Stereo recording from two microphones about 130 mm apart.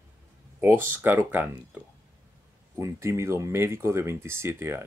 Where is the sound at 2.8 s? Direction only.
20° right (ahead or behind).